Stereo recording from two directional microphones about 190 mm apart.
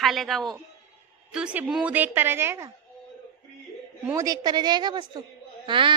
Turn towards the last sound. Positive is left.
turn(degrees=-25)  # may be behind; listen again after turning